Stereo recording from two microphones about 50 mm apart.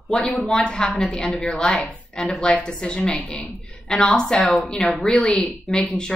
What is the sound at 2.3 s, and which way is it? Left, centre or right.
A woman's voice, left.